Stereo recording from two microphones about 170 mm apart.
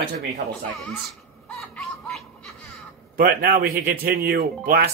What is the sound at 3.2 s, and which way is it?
Speech, 65° right (ahead or behind).